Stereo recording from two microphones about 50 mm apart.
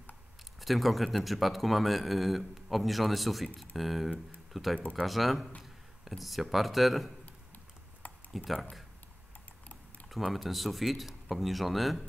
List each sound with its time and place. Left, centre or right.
0.6 s a man's voice: centre
8.0 s computer keyboard: left
10.0 s a man's voice: centre